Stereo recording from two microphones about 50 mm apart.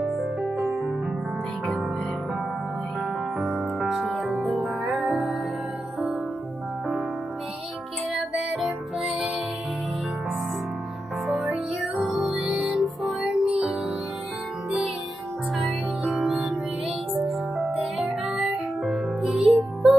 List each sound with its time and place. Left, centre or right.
0.0 s music: centre
3.8 s music: centre
8.1 s music: centre
11.5 s music: centre
15.5 s music: centre